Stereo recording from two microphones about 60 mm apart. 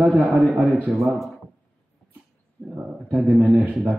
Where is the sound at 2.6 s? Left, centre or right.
Centre.